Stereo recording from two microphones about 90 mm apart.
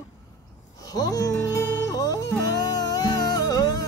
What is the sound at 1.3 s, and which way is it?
Music, 30° left (ahead or behind).